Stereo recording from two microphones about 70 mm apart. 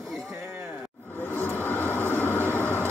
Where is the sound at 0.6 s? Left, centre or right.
Centre.